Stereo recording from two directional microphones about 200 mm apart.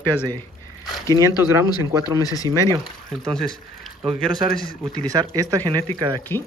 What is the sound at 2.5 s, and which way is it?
Speech, 20° right (ahead or behind).